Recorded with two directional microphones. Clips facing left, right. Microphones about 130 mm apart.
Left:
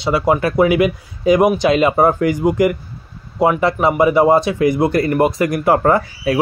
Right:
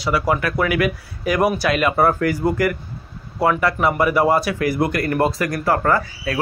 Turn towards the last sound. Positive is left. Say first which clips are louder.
# left 5 dB
turn(degrees=20)  # may be behind; listen again after turning